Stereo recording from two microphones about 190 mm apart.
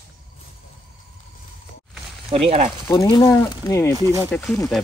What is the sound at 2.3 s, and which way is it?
Speech, 30° right (ahead or behind).